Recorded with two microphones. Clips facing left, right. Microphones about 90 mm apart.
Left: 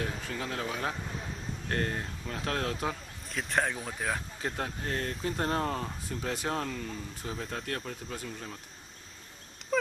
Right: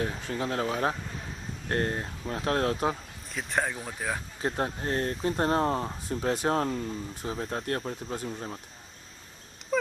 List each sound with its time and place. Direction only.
0.0 s speech: 25° right (ahead or behind)
3.3 s speech: centre (ahead or behind)
4.4 s speech: 30° right (ahead or behind)
6.4 s speech: 35° right (ahead or behind)